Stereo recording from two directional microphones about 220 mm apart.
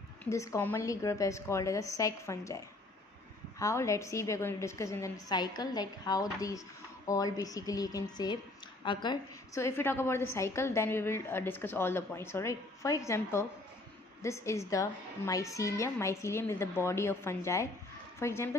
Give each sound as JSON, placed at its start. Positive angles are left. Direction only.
{"t": 0.2, "sound": "a woman's voice", "side_deg": 15}